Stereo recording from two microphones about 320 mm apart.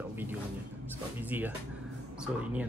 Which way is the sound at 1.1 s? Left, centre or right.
Centre.